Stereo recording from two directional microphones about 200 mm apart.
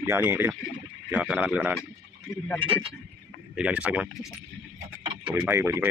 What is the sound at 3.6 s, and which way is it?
Speech, 5° right (ahead or behind).